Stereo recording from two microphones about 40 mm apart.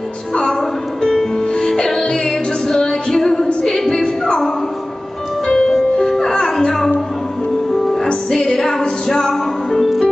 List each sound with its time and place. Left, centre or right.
1.8 s music: centre
5.5 s music: centre
7.7 s music: centre
9.8 s music: centre